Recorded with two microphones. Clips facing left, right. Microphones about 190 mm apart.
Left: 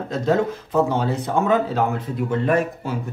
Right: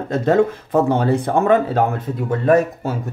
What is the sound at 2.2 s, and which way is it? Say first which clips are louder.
Speech: right 5 dB; 40° right (ahead or behind).